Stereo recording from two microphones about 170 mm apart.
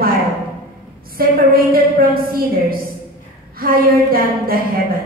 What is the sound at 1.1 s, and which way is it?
A woman's voice, 60° right (ahead or behind).